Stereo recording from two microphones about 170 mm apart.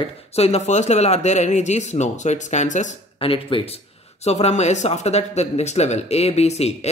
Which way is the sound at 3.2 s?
30° left (ahead or behind).